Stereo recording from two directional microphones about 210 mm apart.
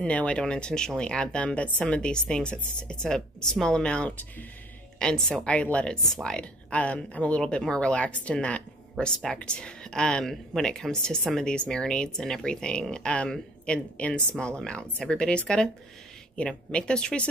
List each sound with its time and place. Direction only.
0.0 s speech: 5° left (ahead or behind)